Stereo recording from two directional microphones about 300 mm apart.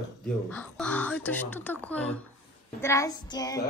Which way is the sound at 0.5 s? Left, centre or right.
Centre.